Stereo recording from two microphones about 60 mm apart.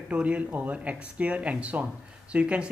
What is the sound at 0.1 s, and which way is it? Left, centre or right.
Speech, right.